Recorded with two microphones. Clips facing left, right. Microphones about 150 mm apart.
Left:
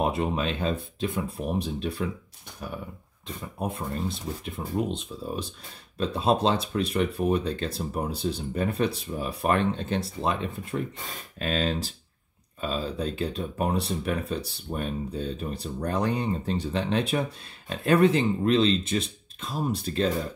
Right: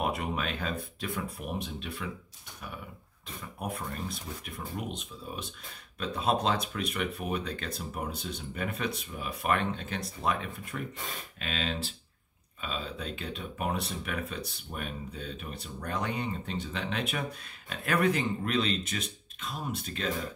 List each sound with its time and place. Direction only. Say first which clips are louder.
0.0 s speech: left 6 dB; 25° left (ahead or behind)
3.5 s speech: left 5 dB; 25° left (ahead or behind)
11.3 s speech: left 8 dB; 40° left (ahead or behind)